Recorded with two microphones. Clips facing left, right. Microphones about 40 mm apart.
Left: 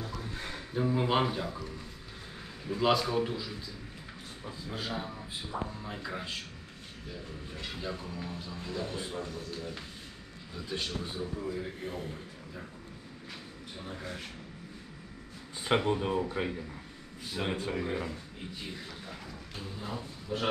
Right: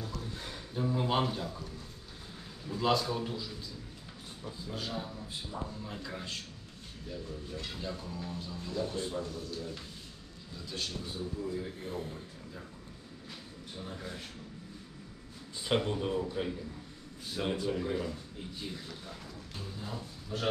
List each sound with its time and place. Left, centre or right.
0.0 s music: left
2.6 s a man's voice: left
5.1 s speech: left
5.7 s a man's voice: centre
7.5 s a man's voice: left
11.8 s speech: left
15.6 s a man's voice: left
17.6 s a man's voice: left